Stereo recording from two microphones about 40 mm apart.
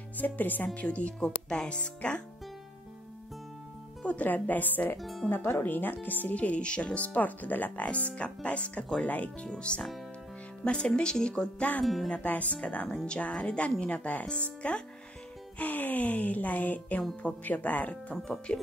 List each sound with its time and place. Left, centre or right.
0.2 s a woman's voice: left
0.7 s speech: left
4.0 s music: left
4.3 s a woman's voice: left
4.9 s speech: centre
5.6 s a woman's voice: left
7.8 s speech: left
9.5 s speech: left
11.8 s speech: centre
12.3 s speech: left
12.8 s speech: left
15.6 s a woman's voice: left
18.5 s speech: left